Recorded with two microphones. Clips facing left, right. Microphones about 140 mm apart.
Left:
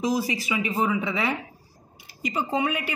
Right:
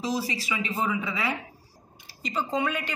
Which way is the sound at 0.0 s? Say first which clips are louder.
Left 4 dB; 15° left (ahead or behind).